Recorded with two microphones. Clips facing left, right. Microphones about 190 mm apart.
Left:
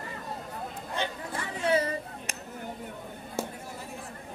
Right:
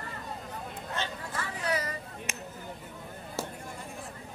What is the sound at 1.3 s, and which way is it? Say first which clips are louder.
Chatter: left 6 dB; 25° left (ahead or behind).